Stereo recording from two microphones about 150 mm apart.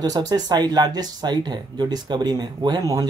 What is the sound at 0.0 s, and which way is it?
Speech, 25° right (ahead or behind).